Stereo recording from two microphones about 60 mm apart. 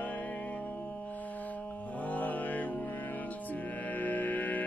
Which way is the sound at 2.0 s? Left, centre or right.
Left.